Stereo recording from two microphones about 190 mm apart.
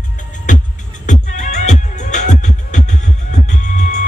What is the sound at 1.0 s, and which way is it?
Music, 40° left (ahead or behind).